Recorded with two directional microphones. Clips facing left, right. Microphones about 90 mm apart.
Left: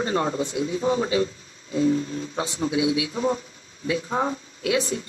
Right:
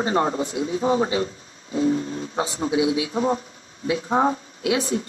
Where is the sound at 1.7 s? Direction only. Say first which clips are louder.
Even; 30° right (ahead or behind).